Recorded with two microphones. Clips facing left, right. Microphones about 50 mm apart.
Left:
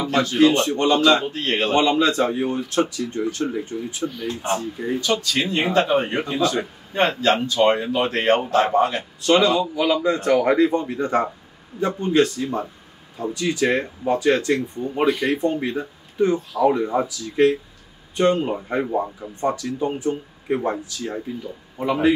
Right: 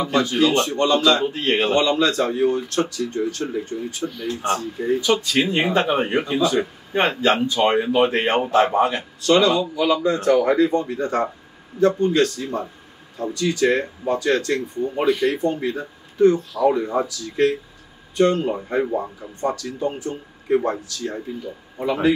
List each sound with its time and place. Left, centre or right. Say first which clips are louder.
0.4 s speech: left 4 dB; centre
1.2 s speech: right 3 dB; centre
1.7 s speech: left 4 dB; centre
5.0 s speech: right 1 dB; centre
9.2 s speech: even; centre